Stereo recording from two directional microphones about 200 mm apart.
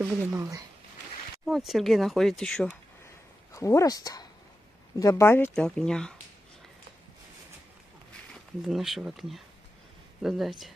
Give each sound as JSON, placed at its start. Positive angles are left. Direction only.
{"t": 0.0, "sound": "speech", "side_deg": -15}
{"t": 1.4, "sound": "speech", "side_deg": 0}
{"t": 3.5, "sound": "speech", "side_deg": 15}
{"t": 8.3, "sound": "speech", "side_deg": 0}